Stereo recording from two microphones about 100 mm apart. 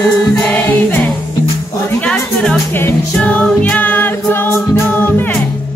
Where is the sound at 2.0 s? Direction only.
10° left (ahead or behind).